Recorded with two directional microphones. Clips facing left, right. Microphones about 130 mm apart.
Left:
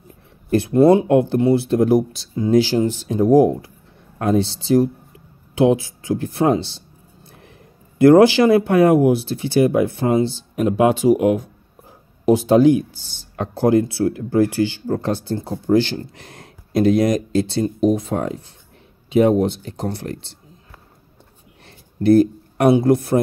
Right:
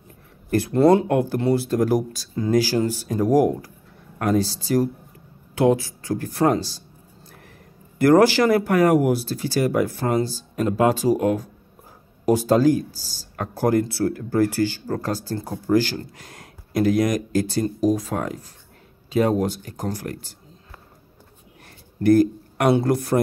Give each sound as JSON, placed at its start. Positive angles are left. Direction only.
{"t": 0.5, "sound": "speech", "side_deg": 20}
{"t": 7.2, "sound": "a sound", "side_deg": 20}
{"t": 8.0, "sound": "speech", "side_deg": 20}
{"t": 21.6, "sound": "speech", "side_deg": 25}